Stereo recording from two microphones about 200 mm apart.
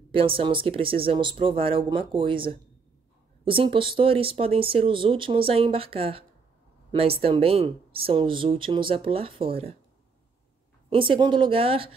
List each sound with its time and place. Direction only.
0.1 s speech: 25° right (ahead or behind)
10.9 s speech: 25° right (ahead or behind)